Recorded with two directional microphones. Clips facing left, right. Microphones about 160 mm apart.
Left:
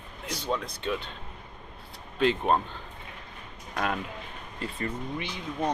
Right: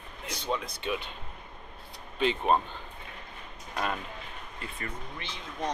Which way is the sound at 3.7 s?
Centre (ahead or behind).